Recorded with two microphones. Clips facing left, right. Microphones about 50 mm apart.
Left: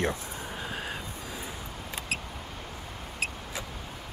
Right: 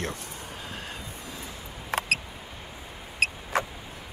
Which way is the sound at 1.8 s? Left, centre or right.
Right.